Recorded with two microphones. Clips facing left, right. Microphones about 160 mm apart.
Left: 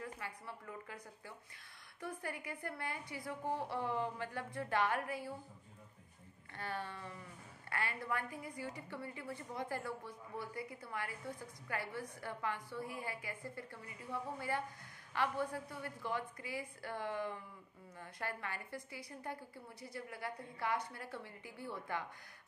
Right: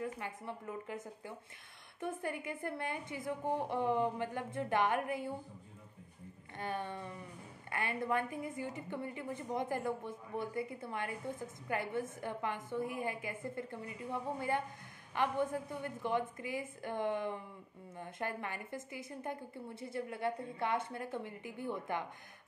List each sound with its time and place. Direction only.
0.0 s a woman's voice: 20° right (ahead or behind)
6.5 s a woman's voice: 20° right (ahead or behind)